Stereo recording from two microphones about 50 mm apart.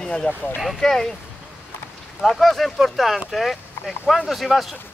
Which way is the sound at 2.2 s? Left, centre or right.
Centre.